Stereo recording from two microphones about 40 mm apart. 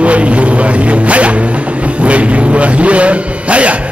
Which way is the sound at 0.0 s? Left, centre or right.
Right.